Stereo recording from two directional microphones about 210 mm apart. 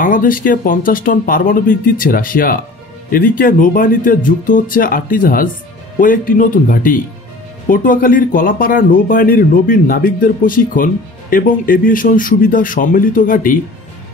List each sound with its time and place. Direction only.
0.0 s speech: 40° left (ahead or behind)